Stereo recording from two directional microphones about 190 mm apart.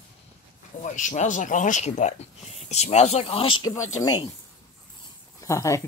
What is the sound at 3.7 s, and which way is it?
Speech, 90° left.